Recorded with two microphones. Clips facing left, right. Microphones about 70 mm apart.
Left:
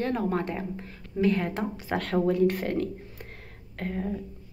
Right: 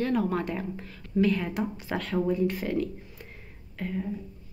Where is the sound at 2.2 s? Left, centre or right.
Left.